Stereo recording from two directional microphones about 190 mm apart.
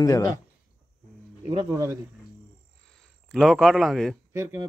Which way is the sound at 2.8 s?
5° left (ahead or behind).